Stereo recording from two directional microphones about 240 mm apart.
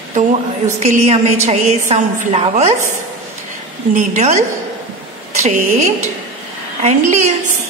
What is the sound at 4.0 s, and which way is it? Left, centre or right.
A woman's voice, right.